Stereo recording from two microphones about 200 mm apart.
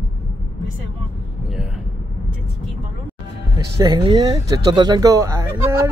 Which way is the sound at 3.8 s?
20° right (ahead or behind).